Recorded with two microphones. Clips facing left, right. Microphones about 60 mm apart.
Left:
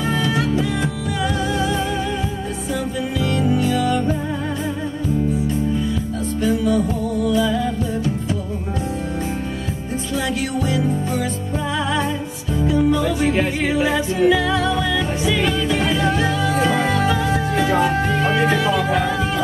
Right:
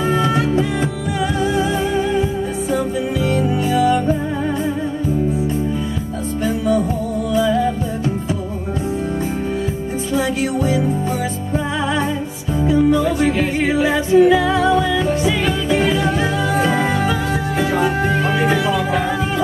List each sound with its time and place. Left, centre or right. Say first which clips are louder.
0.1 s music: right 3 dB; right
3.2 s music: left 1 dB; right
6.4 s music: right 1 dB; centre
12.5 s music: right 3 dB; centre